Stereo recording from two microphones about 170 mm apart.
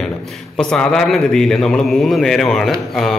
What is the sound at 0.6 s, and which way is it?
A man's voice, 5° left (ahead or behind).